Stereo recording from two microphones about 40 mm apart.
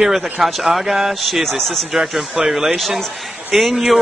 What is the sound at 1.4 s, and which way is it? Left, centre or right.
Speech, centre.